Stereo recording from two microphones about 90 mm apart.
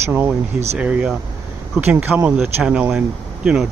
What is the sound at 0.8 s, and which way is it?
Speech, 15° right (ahead or behind).